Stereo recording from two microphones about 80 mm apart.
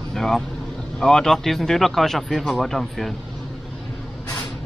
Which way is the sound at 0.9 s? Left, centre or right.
Centre.